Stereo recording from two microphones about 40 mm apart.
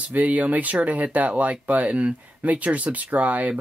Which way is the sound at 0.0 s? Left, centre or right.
Right.